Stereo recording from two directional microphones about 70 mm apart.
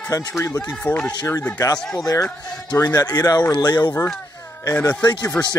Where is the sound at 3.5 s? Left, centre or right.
Left.